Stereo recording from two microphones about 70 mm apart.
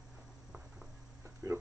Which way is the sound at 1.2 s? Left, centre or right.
Right.